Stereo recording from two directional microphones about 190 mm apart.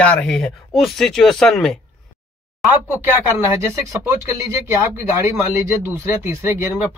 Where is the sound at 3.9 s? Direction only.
15° right (ahead or behind).